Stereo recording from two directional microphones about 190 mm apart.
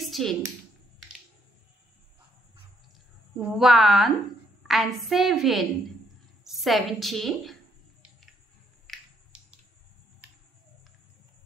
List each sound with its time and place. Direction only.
0.0 s a sound: centre (ahead or behind)
3.3 s a woman's voice: centre (ahead or behind)
8.8 s finger snapping: centre (ahead or behind)